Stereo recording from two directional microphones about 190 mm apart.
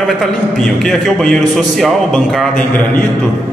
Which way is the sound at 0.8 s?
Centre (ahead or behind).